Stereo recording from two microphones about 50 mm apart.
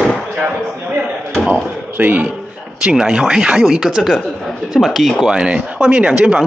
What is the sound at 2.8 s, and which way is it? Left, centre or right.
A man's voice, centre.